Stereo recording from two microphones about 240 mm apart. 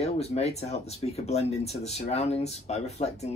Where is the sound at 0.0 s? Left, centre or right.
Left.